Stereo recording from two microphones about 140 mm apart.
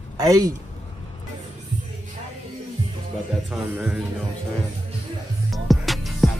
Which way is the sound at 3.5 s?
5° right (ahead or behind).